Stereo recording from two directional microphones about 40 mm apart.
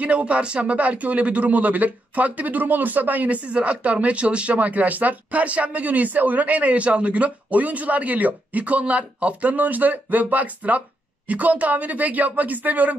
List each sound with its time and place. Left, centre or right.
0.0 s speech: right
3.4 s speech: right
4.6 s speech: right